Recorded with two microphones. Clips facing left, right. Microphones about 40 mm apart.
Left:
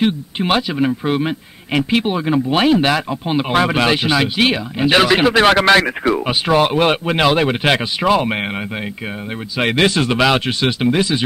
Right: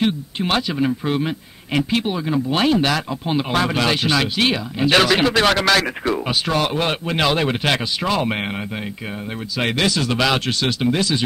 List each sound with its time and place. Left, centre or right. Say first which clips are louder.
0.0 s speech: left 3 dB; centre
5.9 s speech: left 4 dB; centre
9.8 s a man's voice: left 4 dB; left
10.1 s speech: left 4 dB; centre